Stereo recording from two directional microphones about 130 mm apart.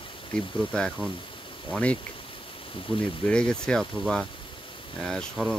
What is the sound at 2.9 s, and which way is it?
Speech, 40° left (ahead or behind).